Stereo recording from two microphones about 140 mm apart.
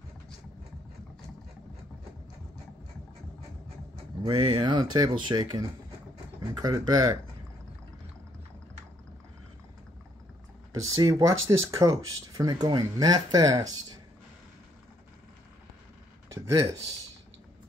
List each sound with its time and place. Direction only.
4.2 s speech: 35° right (ahead or behind)
10.7 s speech: 25° right (ahead or behind)